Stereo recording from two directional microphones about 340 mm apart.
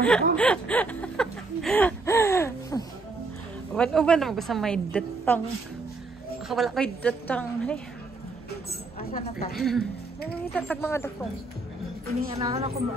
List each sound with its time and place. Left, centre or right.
0.0 s a sound: centre
3.7 s a woman's voice: centre
6.5 s a woman's voice: centre
9.5 s a woman's voice: centre
12.2 s a woman's voice: centre